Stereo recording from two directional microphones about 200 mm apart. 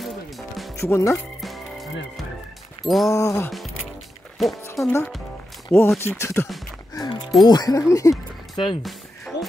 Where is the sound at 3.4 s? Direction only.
Centre (ahead or behind).